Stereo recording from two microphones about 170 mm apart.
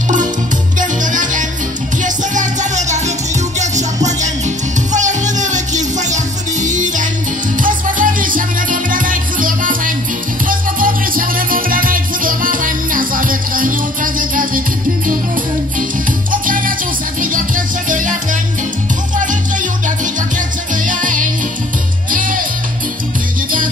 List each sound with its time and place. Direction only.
0.7 s music: 50° right (ahead or behind)
16.3 s music: 55° right (ahead or behind)
17.8 s music: 50° right (ahead or behind)
20.8 s music: 50° right (ahead or behind)